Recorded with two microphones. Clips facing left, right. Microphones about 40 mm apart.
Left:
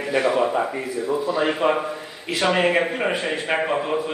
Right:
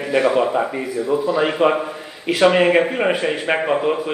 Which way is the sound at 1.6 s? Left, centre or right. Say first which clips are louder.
Right 5 dB; right.